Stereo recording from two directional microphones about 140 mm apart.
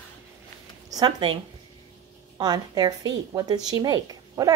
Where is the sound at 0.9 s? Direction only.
30° right (ahead or behind).